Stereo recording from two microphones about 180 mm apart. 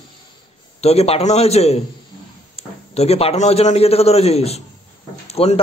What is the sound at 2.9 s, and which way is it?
A man's voice, 35° left (ahead or behind).